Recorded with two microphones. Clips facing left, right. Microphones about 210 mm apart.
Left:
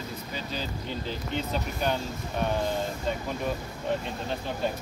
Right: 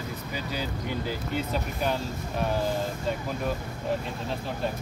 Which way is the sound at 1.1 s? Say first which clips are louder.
Left 1 dB; 5° right (ahead or behind).